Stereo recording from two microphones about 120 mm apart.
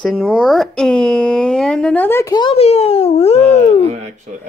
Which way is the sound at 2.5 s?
60° left (ahead or behind).